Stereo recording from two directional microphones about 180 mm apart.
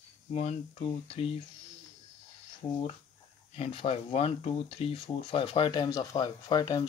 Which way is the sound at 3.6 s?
30° left (ahead or behind).